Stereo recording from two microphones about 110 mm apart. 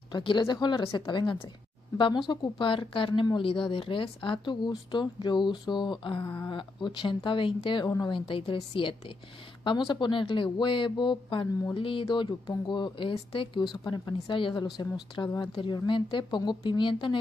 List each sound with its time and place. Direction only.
0.1 s speech: 45° left (ahead or behind)
7.8 s a woman's voice: 35° left (ahead or behind)
8.1 s a woman's voice: 55° left (ahead or behind); by 15.5 s 30° left (ahead or behind)
15.5 s speech: 45° left (ahead or behind)